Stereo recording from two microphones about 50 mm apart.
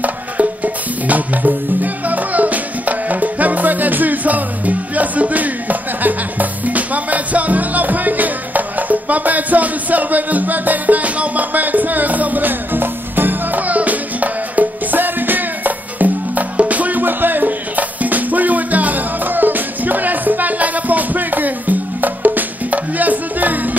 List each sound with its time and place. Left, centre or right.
1.0 s music: right